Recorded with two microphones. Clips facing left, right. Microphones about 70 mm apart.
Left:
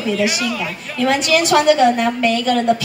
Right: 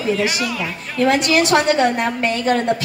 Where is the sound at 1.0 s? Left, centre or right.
Right.